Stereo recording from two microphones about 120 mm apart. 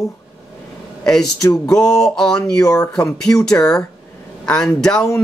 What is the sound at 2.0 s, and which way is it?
Speech, 5° left (ahead or behind).